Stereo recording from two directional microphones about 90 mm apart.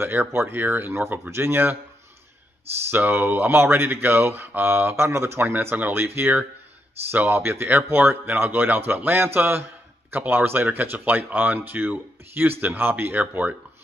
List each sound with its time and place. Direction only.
0.0 s speech: 25° right (ahead or behind)
2.9 s speech: 20° right (ahead or behind)